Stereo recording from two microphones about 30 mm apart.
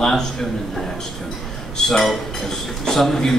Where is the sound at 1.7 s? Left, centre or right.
Left.